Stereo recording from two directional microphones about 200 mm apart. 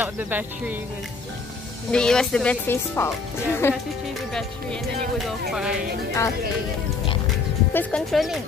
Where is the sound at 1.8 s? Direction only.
5° left (ahead or behind).